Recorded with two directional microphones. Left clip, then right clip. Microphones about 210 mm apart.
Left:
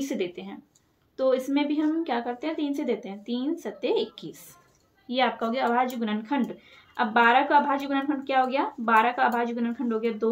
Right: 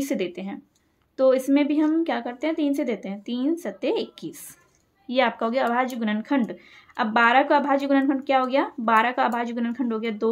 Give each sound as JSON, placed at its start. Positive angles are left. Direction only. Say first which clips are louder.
{"t": 0.0, "sound": "speech", "louder": "right 3 dB", "side_deg": -50}